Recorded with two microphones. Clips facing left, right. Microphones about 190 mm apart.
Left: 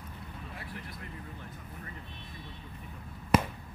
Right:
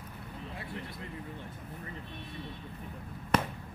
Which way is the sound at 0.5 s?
25° right (ahead or behind).